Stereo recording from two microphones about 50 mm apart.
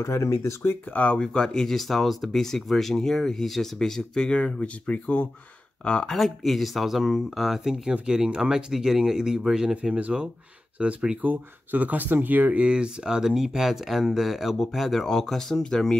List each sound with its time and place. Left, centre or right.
0.0 s speech: left
1.1 s speech: centre
6.1 s speech: centre
9.8 s speech: right
11.2 s speech: right
12.5 s speech: centre